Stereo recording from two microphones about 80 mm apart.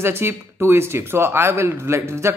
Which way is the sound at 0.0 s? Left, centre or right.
Right.